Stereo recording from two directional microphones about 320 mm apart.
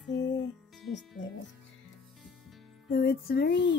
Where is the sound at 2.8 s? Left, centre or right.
Left.